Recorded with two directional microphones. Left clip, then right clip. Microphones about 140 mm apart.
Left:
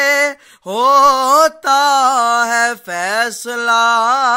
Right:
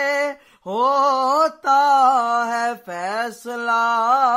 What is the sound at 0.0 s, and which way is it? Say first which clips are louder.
Mantra: left 7 dB; 15° left (ahead or behind).